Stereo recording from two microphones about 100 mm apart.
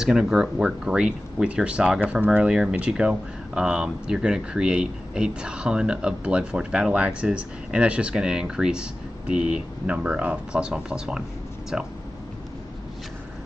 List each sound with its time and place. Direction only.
0.0 s speech: 5° right (ahead or behind)